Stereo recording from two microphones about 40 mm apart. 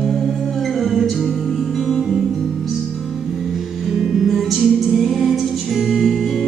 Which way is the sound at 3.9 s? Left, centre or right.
Centre.